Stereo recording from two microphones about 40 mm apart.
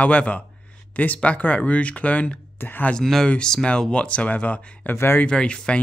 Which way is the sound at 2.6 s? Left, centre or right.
Left.